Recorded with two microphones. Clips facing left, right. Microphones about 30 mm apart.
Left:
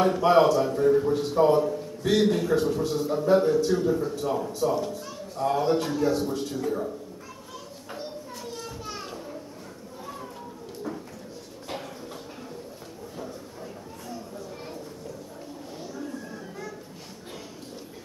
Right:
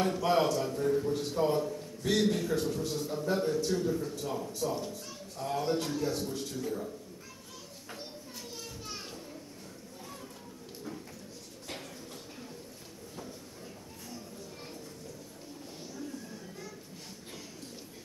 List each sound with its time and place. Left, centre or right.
0.0 s a man's voice: left
7.9 s children playing: centre